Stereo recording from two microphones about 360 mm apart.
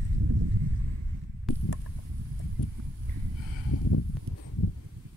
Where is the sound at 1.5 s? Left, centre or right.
Centre.